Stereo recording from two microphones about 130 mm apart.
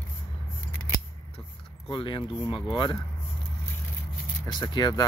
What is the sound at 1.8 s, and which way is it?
Speech, 40° left (ahead or behind).